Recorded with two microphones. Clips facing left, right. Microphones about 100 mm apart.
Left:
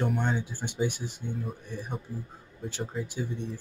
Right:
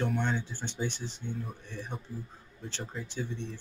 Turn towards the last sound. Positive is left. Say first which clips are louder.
# left 3 dB
turn(degrees=10)  # may be behind; listen again after turning